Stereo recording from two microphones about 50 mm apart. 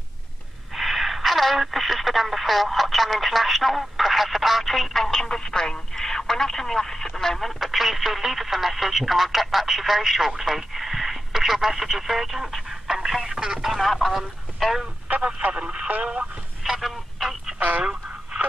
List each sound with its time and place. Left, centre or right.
0.7 s speech: centre
14.1 s speech: centre
15.0 s speech: right
15.5 s speech: centre
16.6 s telephone: centre
17.6 s telephone: right